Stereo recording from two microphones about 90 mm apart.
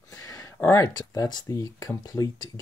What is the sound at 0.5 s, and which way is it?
Speech, 30° left (ahead or behind).